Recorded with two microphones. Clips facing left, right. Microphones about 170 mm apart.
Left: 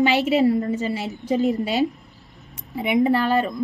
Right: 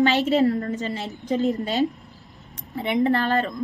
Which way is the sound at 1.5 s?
15° left (ahead or behind).